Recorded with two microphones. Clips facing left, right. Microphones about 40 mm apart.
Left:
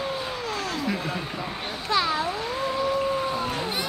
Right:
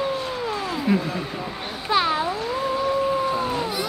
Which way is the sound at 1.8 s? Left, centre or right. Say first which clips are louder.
Right 3 dB; centre.